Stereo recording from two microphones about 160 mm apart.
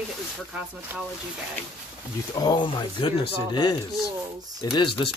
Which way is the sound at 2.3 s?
25° left (ahead or behind).